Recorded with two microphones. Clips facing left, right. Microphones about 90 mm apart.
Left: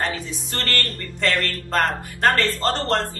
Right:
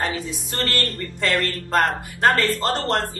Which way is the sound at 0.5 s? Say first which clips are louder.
Right 1 dB; 15° right (ahead or behind).